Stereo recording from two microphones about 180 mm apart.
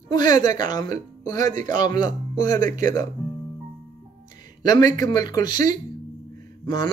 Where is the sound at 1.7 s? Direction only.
20° left (ahead or behind).